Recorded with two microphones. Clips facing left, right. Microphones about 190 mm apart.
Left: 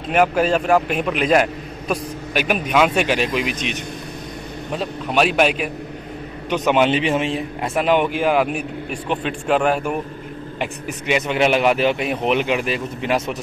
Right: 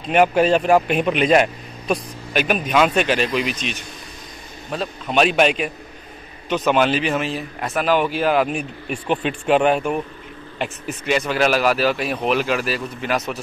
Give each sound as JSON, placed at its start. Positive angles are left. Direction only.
{"t": 0.1, "sound": "a man's voice", "side_deg": 0}
{"t": 3.4, "sound": "a man's voice", "side_deg": 60}
{"t": 4.7, "sound": "a man's voice", "side_deg": 5}
{"t": 6.5, "sound": "a man's voice", "side_deg": 15}
{"t": 9.1, "sound": "a man's voice", "side_deg": -5}
{"t": 10.6, "sound": "a man's voice", "side_deg": 15}